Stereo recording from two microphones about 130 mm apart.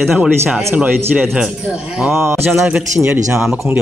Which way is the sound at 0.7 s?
10° right (ahead or behind).